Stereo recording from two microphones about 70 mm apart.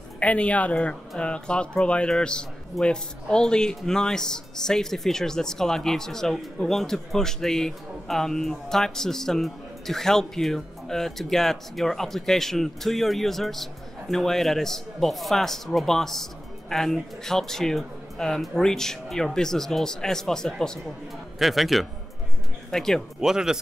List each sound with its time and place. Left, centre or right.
0.2 s a man's voice: centre
23.2 s speech: centre